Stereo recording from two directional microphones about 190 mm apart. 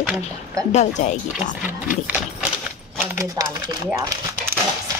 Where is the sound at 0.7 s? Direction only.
40° left (ahead or behind).